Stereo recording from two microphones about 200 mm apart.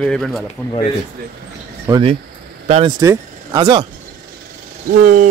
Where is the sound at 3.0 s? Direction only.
15° right (ahead or behind).